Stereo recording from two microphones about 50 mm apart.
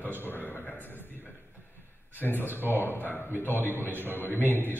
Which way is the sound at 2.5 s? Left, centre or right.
Left.